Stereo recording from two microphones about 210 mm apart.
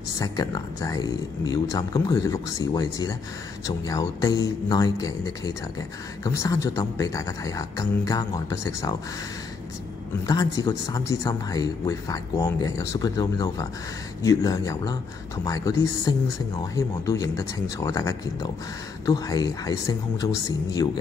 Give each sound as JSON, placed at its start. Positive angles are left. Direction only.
{"t": 0.2, "sound": "speech", "side_deg": 20}
{"t": 10.2, "sound": "speech", "side_deg": 15}